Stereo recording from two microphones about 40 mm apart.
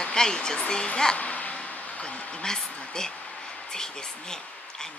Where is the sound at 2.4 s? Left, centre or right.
Centre.